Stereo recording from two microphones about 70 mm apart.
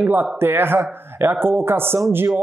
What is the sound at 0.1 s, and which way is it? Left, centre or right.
Speech, right.